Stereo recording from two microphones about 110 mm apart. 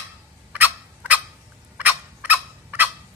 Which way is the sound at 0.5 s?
15° right (ahead or behind).